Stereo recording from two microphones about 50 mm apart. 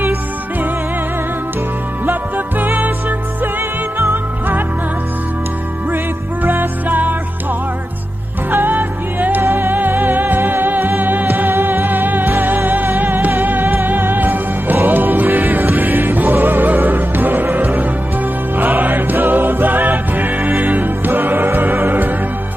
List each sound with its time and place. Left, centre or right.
2.0 s music: right
4.1 s music: right
6.4 s music: right
8.5 s music: right